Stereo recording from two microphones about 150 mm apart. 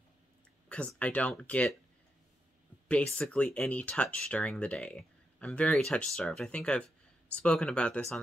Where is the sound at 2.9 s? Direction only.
5° left (ahead or behind).